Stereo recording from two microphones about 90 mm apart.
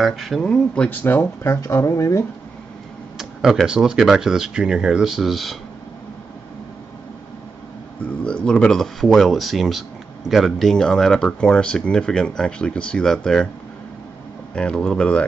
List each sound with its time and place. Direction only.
0.0 s speech: centre (ahead or behind)
0.8 s speech: 20° left (ahead or behind)
3.2 s speech: 5° right (ahead or behind)
8.0 s speech: 10° left (ahead or behind)
14.5 s speech: 10° left (ahead or behind)